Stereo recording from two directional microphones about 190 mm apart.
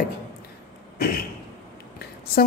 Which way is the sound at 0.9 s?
50° left (ahead or behind).